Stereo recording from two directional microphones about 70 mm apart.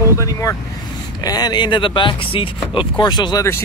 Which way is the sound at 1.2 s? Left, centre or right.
Left.